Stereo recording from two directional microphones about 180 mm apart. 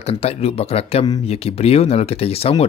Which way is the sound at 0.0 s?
35° left (ahead or behind).